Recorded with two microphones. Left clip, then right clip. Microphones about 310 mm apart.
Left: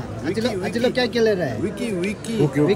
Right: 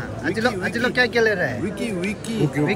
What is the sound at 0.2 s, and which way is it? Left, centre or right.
Speech, centre.